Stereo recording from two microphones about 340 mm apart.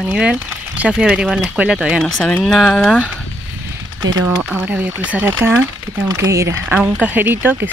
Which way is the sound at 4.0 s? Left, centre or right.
Centre.